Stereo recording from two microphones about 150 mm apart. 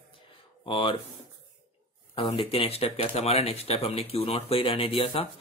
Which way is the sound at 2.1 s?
35° left (ahead or behind).